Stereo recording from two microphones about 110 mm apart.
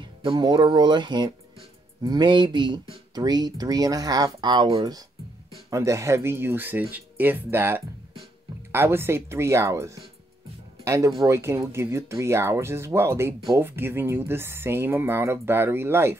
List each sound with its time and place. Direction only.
0.2 s speech: 50° right (ahead or behind)
5.7 s speech: 25° right (ahead or behind)